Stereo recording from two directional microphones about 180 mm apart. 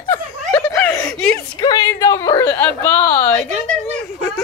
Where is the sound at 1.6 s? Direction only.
20° left (ahead or behind).